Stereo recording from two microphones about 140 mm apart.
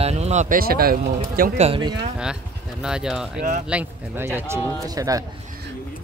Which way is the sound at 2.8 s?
5° right (ahead or behind).